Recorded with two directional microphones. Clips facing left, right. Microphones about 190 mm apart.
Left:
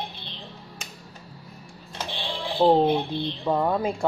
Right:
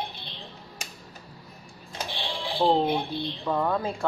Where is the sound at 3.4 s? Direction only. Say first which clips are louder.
Left 3 dB; 20° left (ahead or behind).